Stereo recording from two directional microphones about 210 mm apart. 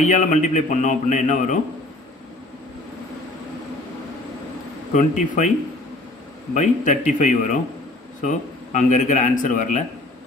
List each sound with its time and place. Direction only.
0.0 s a man's voice: 35° left (ahead or behind)
4.9 s a man's voice: 35° left (ahead or behind)
6.5 s a man's voice: 35° left (ahead or behind)